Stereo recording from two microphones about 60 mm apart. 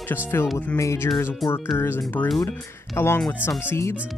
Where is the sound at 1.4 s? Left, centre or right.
Left.